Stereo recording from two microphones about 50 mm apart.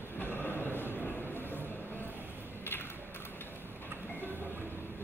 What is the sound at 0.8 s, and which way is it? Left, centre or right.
Train, left.